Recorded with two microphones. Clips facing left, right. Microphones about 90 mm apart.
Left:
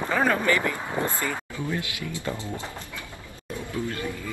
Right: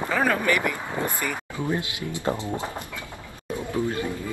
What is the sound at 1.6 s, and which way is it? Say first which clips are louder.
Speech: right 4 dB; 20° right (ahead or behind).